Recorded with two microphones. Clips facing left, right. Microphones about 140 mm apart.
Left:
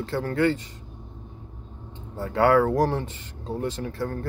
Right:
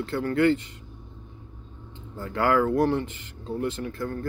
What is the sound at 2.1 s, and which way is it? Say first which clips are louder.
Speech: left 4 dB; 30° left (ahead or behind).